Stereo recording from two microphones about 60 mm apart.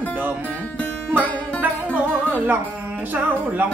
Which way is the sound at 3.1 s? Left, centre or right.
Right.